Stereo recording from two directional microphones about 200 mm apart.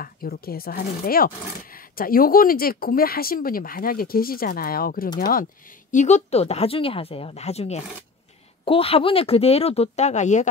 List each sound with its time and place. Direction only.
0.0 s speech: 50° left (ahead or behind)